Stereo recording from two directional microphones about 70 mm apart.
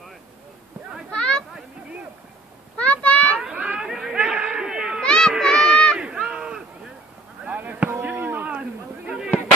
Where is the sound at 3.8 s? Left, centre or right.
Centre.